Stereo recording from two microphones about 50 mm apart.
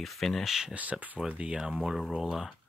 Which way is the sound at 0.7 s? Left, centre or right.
Right.